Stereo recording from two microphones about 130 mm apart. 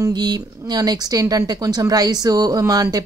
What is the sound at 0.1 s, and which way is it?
Speech, 35° right (ahead or behind).